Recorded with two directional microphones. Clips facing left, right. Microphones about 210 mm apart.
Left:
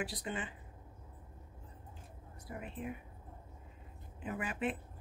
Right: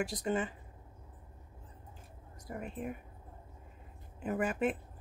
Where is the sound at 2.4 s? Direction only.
45° right (ahead or behind).